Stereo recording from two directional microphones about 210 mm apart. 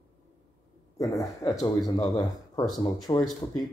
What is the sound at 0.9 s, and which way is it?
A man's voice, 15° left (ahead or behind).